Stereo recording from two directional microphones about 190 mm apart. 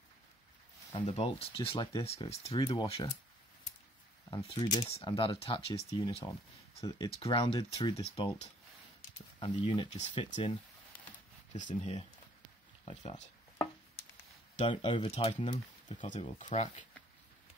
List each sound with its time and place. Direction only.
1.0 s speech: 30° left (ahead or behind)
4.3 s speech: 30° left (ahead or behind)
9.4 s speech: 30° left (ahead or behind)
11.5 s speech: 40° left (ahead or behind)
14.6 s speech: 30° left (ahead or behind)